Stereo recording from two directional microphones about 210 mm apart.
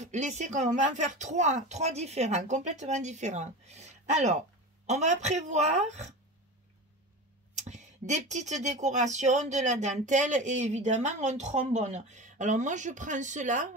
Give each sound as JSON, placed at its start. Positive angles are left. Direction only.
{"t": 0.0, "sound": "speech", "side_deg": -35}
{"t": 7.5, "sound": "speech", "side_deg": -35}